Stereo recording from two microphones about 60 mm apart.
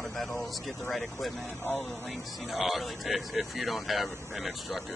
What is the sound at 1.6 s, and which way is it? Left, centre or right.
Speech, left.